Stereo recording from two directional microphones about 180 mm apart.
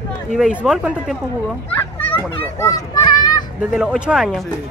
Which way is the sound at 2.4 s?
15° left (ahead or behind).